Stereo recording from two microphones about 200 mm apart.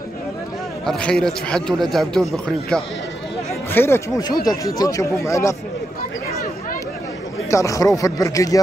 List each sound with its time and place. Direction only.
0.8 s a man's voice: 5° left (ahead or behind)
7.5 s speech: 15° left (ahead or behind)